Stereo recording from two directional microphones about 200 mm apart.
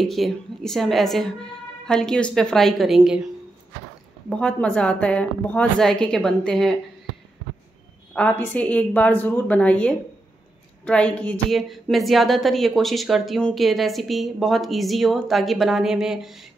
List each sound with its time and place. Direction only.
0.0 s a woman's voice: centre (ahead or behind)
4.3 s a woman's voice: 5° left (ahead or behind)
8.1 s a woman's voice: 5° left (ahead or behind)